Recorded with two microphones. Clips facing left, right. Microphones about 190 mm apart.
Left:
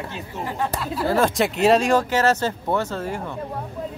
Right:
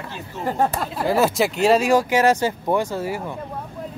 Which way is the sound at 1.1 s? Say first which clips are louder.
Right 1 dB; 5° right (ahead or behind).